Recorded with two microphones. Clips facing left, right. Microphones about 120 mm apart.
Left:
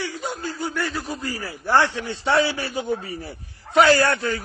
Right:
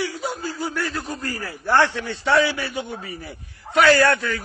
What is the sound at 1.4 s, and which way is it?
A man's voice, 15° left (ahead or behind).